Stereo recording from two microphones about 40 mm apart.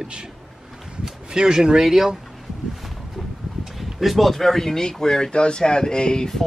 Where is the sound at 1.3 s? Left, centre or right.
Centre.